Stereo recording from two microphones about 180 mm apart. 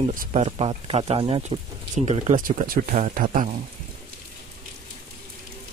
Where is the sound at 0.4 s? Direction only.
35° right (ahead or behind).